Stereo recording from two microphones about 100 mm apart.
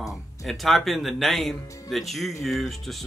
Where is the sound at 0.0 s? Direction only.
Centre (ahead or behind).